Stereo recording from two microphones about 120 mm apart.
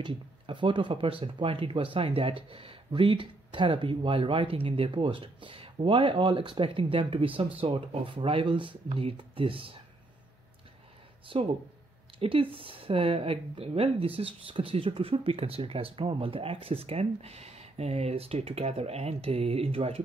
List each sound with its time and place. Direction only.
0.0 s a woman's voice: 40° right (ahead or behind)
11.3 s a woman's voice: 50° right (ahead or behind)